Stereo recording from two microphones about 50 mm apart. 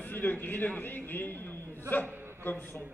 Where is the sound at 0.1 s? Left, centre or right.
Left.